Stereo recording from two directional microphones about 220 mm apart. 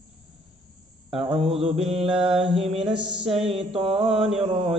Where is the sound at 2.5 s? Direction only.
Centre (ahead or behind).